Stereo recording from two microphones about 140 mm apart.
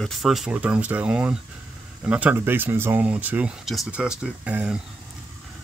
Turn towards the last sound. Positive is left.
turn(degrees=-10)  # may be behind; listen again after turning